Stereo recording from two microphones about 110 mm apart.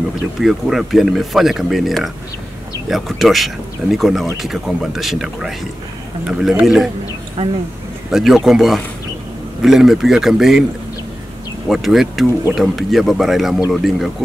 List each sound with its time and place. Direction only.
0.4 s speech: 5° right (ahead or behind)
7.4 s speech: 65° right (ahead or behind)
8.1 s speech: 5° right (ahead or behind)
11.7 s speech: centre (ahead or behind)